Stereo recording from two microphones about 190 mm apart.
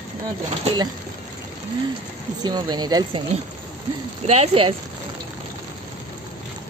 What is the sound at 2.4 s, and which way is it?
Speech, 20° right (ahead or behind).